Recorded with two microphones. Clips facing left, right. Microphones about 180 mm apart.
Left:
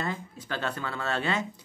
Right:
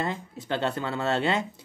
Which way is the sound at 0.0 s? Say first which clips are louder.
Right 3 dB; 25° right (ahead or behind).